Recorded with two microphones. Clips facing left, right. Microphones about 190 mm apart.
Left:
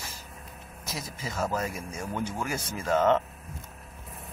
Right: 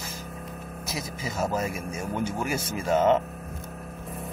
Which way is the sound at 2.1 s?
10° right (ahead or behind).